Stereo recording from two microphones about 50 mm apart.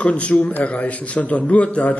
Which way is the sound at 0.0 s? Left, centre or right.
Left.